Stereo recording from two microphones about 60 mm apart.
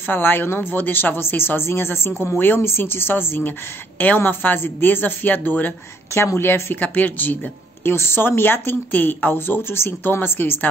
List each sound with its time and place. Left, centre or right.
0.0 s a woman's voice: left
6.1 s a woman's voice: left
7.8 s a woman's voice: left